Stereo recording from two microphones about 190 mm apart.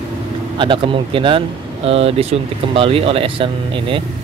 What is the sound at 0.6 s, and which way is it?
Speech, 25° right (ahead or behind).